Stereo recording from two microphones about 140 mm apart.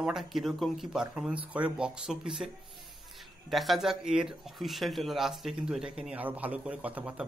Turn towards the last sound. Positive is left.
turn(degrees=-10)  # may be behind; listen again after turning